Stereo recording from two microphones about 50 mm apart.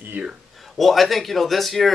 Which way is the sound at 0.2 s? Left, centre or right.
Right.